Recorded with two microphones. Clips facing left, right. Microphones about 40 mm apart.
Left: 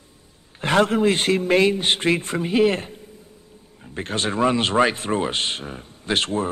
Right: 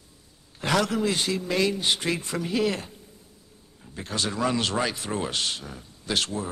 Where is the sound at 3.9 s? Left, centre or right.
Left.